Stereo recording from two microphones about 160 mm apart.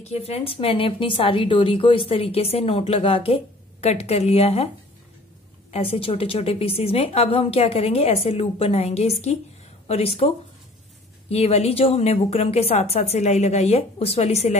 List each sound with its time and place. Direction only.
0.0 s a woman's voice: 40° left (ahead or behind)
5.7 s a woman's voice: 35° left (ahead or behind)